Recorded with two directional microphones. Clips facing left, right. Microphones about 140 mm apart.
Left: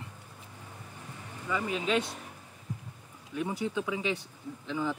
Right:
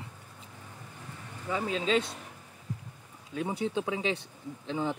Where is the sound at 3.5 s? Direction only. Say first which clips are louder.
Right 2 dB; 30° right (ahead or behind).